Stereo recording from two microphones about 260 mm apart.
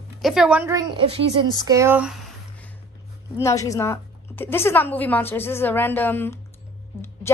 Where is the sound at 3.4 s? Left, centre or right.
Centre.